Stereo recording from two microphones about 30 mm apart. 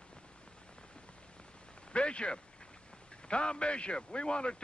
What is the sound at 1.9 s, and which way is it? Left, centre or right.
A man's voice, left.